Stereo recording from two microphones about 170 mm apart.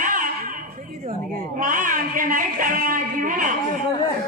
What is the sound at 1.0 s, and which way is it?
Speech, 50° right (ahead or behind).